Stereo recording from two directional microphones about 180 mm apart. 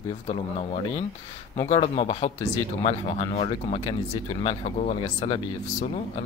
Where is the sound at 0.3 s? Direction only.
40° left (ahead or behind).